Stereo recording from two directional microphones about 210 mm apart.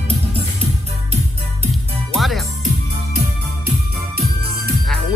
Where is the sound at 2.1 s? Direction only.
Centre (ahead or behind).